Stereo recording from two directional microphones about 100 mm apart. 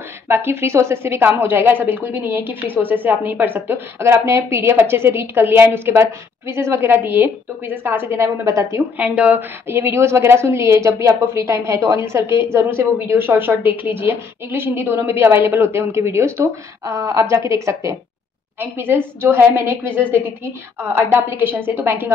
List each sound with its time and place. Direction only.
0.3 s a woman's voice: 25° right (ahead or behind)
8.9 s a woman's voice: 15° right (ahead or behind)
20.9 s a woman's voice: 20° right (ahead or behind)